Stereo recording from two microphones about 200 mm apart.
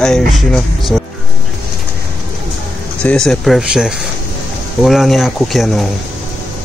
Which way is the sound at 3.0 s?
5° left (ahead or behind).